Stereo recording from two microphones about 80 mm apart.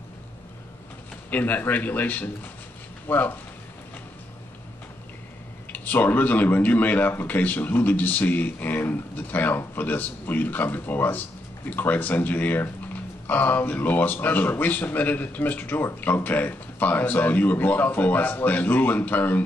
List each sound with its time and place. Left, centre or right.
1.3 s speech: left
5.7 s speech: left